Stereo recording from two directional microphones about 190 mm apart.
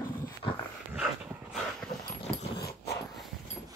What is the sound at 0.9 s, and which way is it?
Dog, centre (ahead or behind).